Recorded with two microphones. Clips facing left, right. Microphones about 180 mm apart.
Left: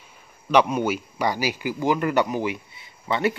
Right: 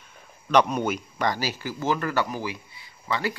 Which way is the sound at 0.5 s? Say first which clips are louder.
Left 2 dB; 10° left (ahead or behind).